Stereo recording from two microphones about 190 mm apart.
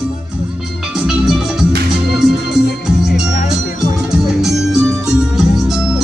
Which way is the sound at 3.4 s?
50° left (ahead or behind).